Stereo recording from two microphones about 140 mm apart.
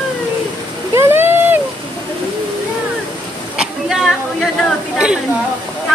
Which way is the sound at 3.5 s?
Centre (ahead or behind).